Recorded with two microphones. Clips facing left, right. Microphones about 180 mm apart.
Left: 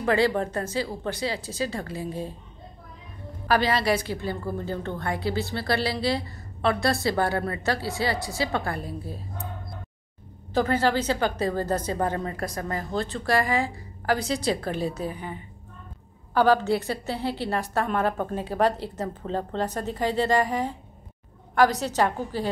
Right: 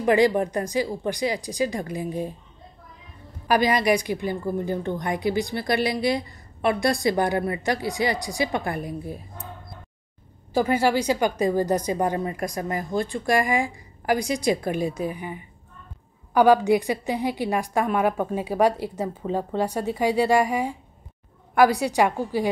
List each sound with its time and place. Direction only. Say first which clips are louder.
0.0 s a woman's voice: right 4 dB; 15° right (ahead or behind)
3.4 s a woman's voice: right 3 dB; 15° right (ahead or behind)
10.5 s a woman's voice: right 2 dB; 10° right (ahead or behind)